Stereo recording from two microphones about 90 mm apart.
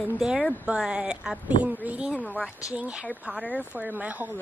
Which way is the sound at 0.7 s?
10° right (ahead or behind).